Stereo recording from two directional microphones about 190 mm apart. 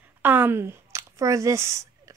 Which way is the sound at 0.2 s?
10° right (ahead or behind).